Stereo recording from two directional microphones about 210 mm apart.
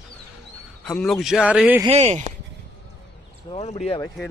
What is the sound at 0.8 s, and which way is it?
Speech, centre (ahead or behind).